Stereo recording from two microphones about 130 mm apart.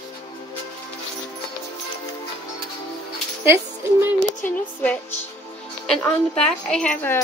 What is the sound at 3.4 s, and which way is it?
Speech, 20° right (ahead or behind).